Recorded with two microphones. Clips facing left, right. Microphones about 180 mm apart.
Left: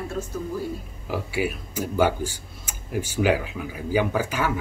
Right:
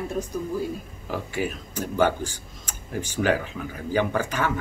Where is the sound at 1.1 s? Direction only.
10° left (ahead or behind).